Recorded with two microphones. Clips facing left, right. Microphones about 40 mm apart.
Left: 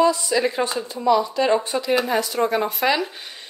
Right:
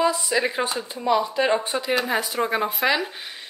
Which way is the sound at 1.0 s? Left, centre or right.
Right.